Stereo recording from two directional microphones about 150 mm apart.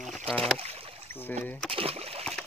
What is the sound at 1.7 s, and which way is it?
Splash, 40° right (ahead or behind).